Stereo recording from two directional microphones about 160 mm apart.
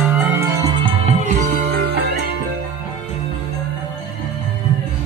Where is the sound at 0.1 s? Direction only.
15° right (ahead or behind).